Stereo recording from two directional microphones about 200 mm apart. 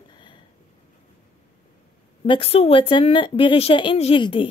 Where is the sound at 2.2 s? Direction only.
30° left (ahead or behind).